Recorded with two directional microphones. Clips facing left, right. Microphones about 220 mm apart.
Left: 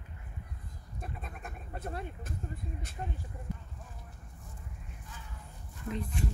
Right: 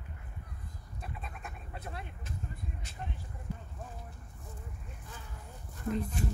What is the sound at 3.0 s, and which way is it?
Speech, 40° left (ahead or behind).